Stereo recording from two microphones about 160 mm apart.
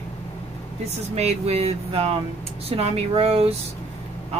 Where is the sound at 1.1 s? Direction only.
40° right (ahead or behind).